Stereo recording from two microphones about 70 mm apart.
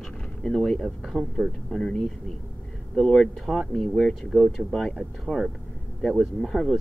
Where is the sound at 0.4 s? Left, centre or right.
Centre.